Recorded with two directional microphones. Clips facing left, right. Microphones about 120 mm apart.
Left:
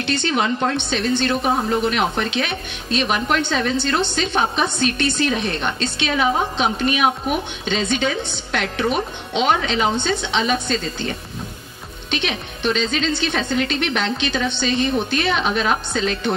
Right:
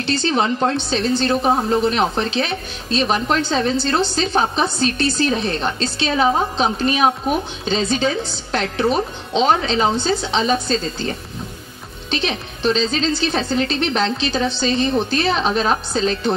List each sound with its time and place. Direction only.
0.0 s a woman's voice: 35° right (ahead or behind)